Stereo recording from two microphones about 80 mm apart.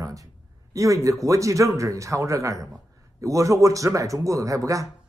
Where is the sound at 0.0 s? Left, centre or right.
Right.